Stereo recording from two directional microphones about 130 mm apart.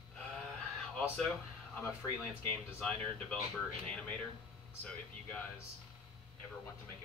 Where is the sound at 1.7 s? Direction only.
10° left (ahead or behind).